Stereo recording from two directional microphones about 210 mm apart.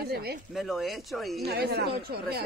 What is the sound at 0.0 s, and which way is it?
Speech, 50° right (ahead or behind).